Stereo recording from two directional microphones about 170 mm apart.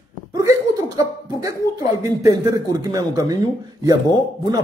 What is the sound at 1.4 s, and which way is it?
Speech, 20° right (ahead or behind).